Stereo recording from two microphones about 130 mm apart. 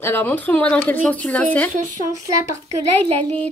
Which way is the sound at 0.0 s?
15° left (ahead or behind).